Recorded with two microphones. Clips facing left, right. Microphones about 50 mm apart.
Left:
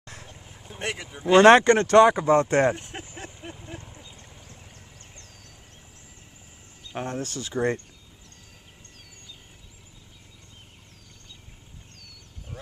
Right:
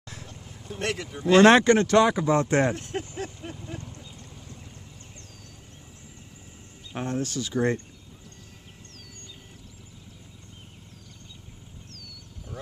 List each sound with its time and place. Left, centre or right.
0.0 s vehicle: left
0.3 s speech: centre
2.8 s a sound: centre
7.1 s speech: left